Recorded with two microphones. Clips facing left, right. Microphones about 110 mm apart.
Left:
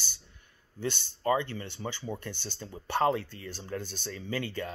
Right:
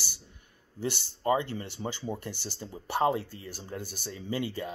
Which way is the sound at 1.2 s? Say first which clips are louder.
Right 1 dB; 20° right (ahead or behind).